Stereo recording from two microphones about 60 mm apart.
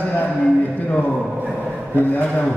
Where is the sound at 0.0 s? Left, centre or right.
Left.